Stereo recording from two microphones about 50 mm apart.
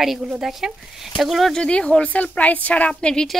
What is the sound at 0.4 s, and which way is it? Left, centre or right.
Speech, centre.